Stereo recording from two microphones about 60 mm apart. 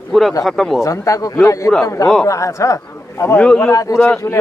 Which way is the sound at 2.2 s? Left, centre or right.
Left.